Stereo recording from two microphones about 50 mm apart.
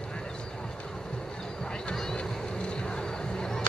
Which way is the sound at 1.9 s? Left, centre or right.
Centre.